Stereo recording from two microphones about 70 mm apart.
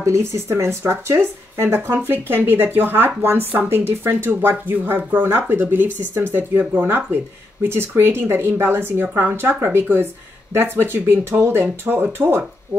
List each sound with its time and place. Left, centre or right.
0.0 s speech: right